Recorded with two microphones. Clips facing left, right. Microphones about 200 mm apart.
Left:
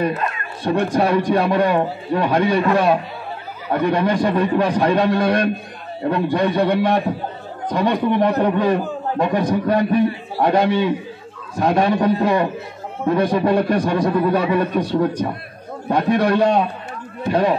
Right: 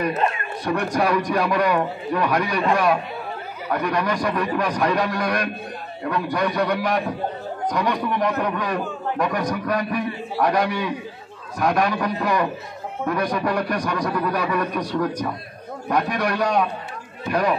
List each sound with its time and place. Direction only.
0.7 s a man's voice: 25° left (ahead or behind)